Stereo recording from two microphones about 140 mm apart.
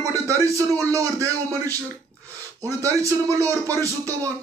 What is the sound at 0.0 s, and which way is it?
Speech, 20° right (ahead or behind).